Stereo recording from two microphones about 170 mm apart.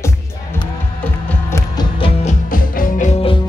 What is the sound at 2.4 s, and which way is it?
Music, 55° left (ahead or behind).